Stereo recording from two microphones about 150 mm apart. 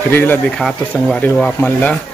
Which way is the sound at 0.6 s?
Centre (ahead or behind).